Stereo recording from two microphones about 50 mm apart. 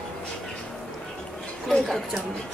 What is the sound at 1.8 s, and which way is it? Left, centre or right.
Speech, centre.